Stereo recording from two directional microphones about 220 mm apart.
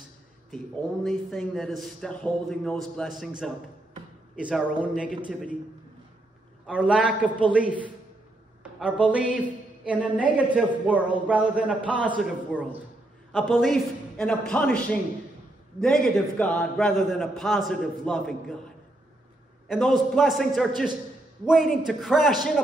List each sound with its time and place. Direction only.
1.0 s a man's voice: centre (ahead or behind)
6.6 s a man's voice: 5° right (ahead or behind)
8.7 s music: 5° right (ahead or behind)
10.0 s a man's voice: 5° right (ahead or behind)
19.7 s a man's voice: centre (ahead or behind)